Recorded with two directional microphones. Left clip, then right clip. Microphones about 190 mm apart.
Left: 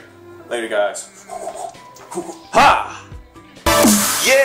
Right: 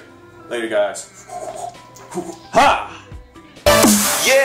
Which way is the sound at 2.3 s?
20° left (ahead or behind).